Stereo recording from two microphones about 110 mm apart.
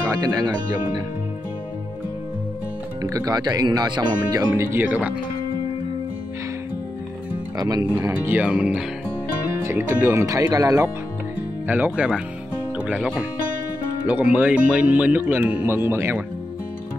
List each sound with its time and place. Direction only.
0.1 s speech: 35° right (ahead or behind)
3.0 s speech: 35° right (ahead or behind)
4.8 s speech: 10° right (ahead or behind)
7.5 s speech: 35° right (ahead or behind)
8.1 s speech: 15° right (ahead or behind)
9.6 s music: 25° right (ahead or behind)
9.9 s speech: 20° right (ahead or behind)
10.2 s speech: 30° right (ahead or behind)
11.6 s speech: 15° right (ahead or behind)